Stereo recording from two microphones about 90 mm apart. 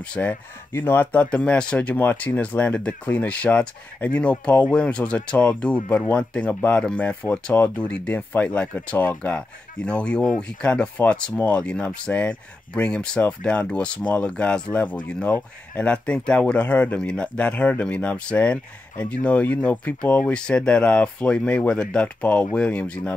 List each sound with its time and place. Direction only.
0.0 s speech: 15° left (ahead or behind)